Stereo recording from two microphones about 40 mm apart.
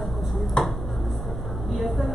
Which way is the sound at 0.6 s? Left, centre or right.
Left.